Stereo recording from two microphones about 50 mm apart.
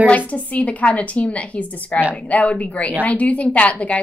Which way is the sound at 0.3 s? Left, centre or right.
Left.